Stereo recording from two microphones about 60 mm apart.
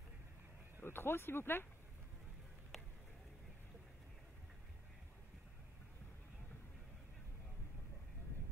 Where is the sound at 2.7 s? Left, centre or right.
Centre.